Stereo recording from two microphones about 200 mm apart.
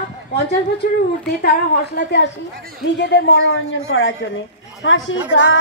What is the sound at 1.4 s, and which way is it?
A woman's voice, 55° left (ahead or behind).